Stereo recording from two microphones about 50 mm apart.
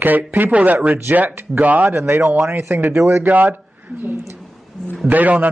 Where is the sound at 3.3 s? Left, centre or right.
Right.